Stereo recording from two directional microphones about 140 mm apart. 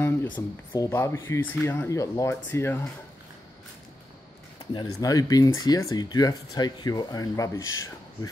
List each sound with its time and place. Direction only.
0.0 s a sound: 10° left (ahead or behind)
0.3 s speech: 20° left (ahead or behind)
4.7 s speech: 25° left (ahead or behind)